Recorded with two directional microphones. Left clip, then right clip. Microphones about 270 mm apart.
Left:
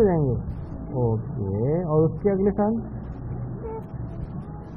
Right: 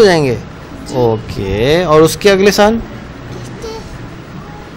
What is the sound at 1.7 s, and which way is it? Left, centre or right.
Speech, right.